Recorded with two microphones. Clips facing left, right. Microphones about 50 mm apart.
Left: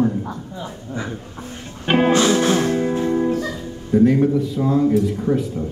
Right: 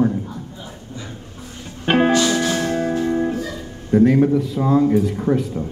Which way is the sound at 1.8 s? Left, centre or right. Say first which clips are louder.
Right 1 dB; centre.